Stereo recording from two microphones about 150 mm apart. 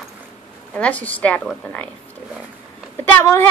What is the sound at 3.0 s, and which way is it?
Speech, 15° left (ahead or behind).